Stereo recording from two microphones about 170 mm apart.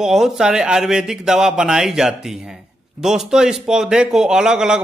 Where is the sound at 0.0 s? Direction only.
5° right (ahead or behind).